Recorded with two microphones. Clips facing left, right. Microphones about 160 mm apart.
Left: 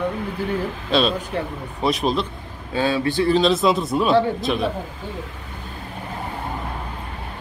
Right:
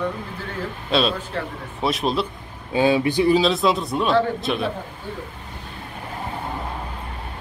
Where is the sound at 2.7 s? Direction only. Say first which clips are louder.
Right 3 dB; 15° right (ahead or behind).